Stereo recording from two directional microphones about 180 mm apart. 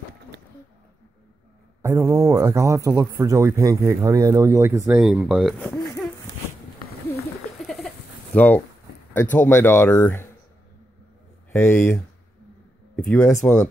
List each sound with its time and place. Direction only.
1.8 s speech: 15° right (ahead or behind); by 6.0 s centre (ahead or behind)
7.6 s a sound: centre (ahead or behind)
9.1 s speech: 10° left (ahead or behind)
11.5 s speech: 10° left (ahead or behind)